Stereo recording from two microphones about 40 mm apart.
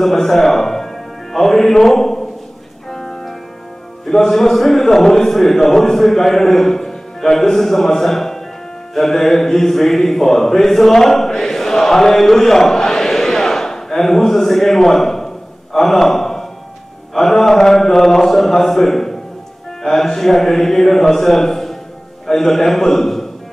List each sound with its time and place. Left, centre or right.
0.0 s music: centre
4.0 s a man's voice: centre
8.9 s a sound: centre
15.7 s a man's voice: centre